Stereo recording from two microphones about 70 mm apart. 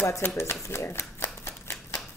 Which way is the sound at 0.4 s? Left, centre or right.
Left.